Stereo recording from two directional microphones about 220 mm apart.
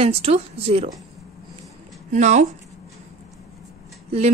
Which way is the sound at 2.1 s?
30° right (ahead or behind).